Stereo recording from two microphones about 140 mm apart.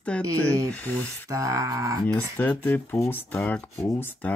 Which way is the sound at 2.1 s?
10° left (ahead or behind).